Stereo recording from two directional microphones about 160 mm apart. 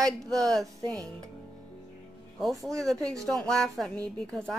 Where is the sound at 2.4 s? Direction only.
Centre (ahead or behind).